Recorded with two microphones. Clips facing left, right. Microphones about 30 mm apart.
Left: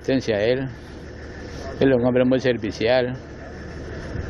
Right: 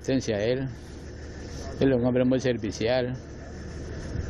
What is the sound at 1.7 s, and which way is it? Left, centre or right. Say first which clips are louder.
Speech: left 5 dB; left.